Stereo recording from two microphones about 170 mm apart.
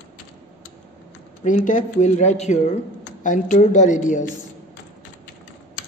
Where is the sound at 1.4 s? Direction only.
50° left (ahead or behind).